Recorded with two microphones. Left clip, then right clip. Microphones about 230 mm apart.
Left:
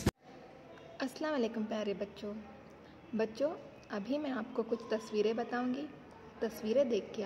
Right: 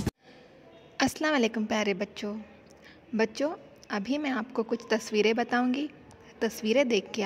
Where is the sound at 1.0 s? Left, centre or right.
Right.